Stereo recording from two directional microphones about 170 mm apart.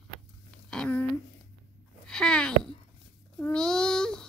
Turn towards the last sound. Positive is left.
turn(degrees=5)  # may be behind; listen again after turning